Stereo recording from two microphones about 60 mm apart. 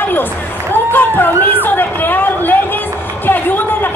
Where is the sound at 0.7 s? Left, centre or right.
Left.